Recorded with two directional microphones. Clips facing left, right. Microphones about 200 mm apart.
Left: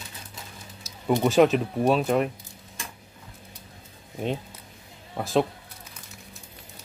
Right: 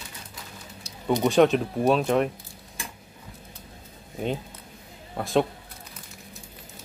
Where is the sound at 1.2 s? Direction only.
Centre (ahead or behind).